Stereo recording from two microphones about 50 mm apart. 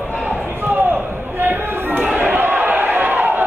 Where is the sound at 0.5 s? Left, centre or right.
Right.